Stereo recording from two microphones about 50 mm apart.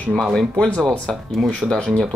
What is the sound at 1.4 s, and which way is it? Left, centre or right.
Speech, centre.